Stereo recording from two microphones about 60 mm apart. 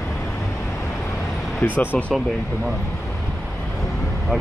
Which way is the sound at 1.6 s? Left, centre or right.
Left.